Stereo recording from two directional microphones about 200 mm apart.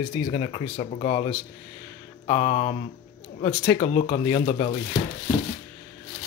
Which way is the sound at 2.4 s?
35° left (ahead or behind).